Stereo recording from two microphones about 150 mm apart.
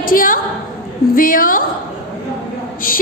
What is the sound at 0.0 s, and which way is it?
A woman's voice, 70° left (ahead or behind).